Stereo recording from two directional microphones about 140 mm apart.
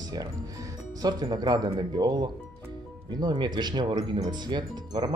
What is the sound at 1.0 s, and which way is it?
Speech, 30° right (ahead or behind).